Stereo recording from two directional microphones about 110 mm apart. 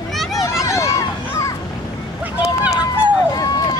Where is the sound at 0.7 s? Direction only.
25° left (ahead or behind).